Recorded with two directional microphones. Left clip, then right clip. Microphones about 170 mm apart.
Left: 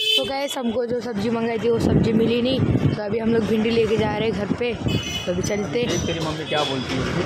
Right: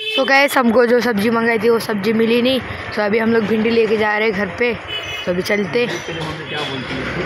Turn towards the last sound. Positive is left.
turn(degrees=0)  # may be behind; listen again after turning